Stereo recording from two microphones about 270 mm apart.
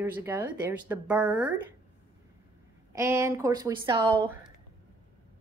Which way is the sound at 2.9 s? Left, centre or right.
Centre.